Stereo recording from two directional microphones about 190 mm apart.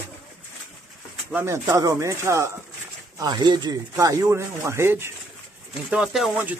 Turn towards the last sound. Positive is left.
turn(degrees=-5)  # may be behind; listen again after turning